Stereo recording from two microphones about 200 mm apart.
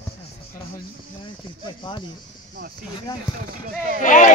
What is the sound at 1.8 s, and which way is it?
Speech, 25° left (ahead or behind).